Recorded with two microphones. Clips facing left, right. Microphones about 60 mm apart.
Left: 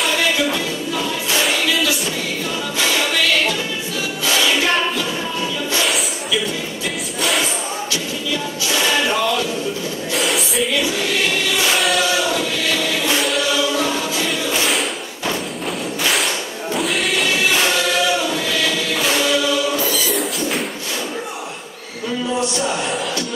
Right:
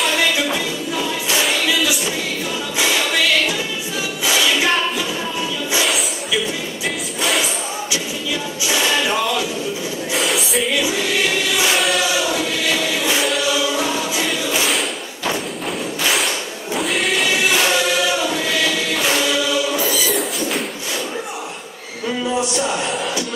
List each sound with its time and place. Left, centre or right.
0.0 s music: centre
4.2 s music: centre
7.2 s a sound: centre
8.6 s music: centre
10.1 s a sound: centre
11.7 s choir: centre
13.5 s choir: centre
16.0 s thump: centre
16.7 s music: centre
20.1 s a sound: centre